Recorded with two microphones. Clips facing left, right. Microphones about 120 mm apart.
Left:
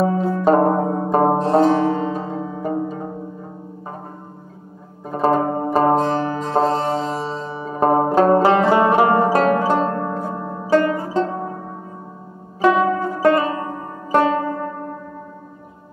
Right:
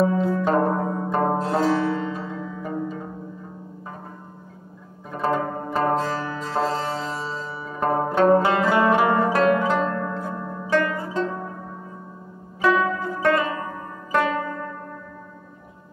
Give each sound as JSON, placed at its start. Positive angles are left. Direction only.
{"t": 0.0, "sound": "music", "side_deg": 35}
{"t": 5.1, "sound": "zither", "side_deg": 35}
{"t": 5.9, "sound": "music", "side_deg": 30}
{"t": 12.6, "sound": "zither", "side_deg": 25}
{"t": 13.0, "sound": "music", "side_deg": 35}